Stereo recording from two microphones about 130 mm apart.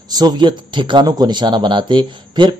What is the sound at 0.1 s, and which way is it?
Speech, 30° right (ahead or behind).